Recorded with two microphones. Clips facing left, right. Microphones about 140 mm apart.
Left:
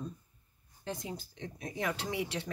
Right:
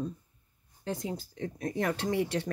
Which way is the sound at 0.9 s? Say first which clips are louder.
Right 5 dB; 35° right (ahead or behind).